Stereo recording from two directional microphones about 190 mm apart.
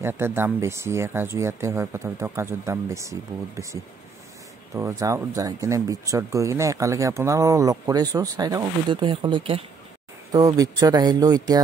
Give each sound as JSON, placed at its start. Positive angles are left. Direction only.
{"t": 0.0, "sound": "speech", "side_deg": -10}
{"t": 10.3, "sound": "speech", "side_deg": -20}